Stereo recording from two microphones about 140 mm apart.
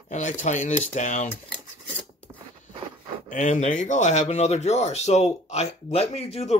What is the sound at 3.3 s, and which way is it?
Speech, 60° left (ahead or behind).